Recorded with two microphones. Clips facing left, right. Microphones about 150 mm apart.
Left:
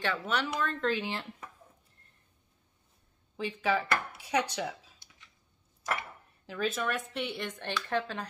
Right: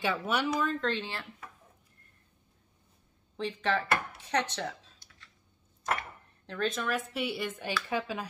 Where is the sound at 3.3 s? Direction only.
5° left (ahead or behind).